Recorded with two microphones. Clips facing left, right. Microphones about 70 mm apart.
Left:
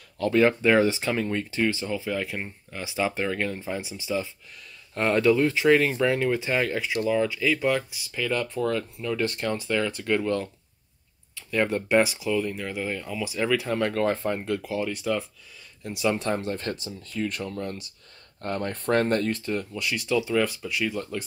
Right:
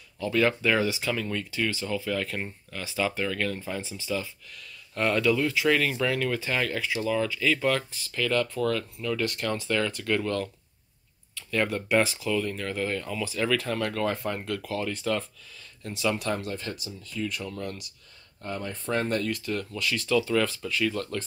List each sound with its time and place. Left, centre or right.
0.3 s speech: left
14.9 s speech: centre
15.8 s speech: centre
16.2 s speech: left
16.5 s speech: left
18.4 s speech: left; by 21.2 s centre